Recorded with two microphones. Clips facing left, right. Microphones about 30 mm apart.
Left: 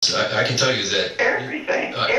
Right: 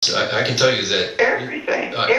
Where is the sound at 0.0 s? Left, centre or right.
Centre.